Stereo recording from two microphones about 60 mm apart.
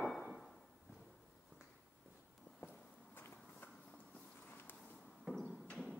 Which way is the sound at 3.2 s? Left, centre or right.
Left.